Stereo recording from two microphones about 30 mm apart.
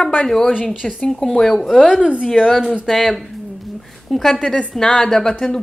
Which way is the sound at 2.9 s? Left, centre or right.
Centre.